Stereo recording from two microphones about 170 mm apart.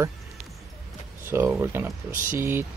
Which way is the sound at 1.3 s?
15° right (ahead or behind).